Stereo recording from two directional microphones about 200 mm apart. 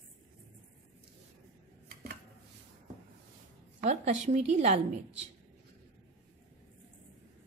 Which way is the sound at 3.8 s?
35° right (ahead or behind).